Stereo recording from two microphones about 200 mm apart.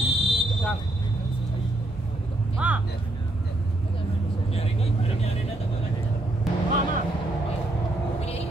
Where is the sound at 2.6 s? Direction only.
5° right (ahead or behind).